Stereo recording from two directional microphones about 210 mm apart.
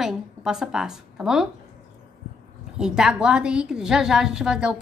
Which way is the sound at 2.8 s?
5° right (ahead or behind).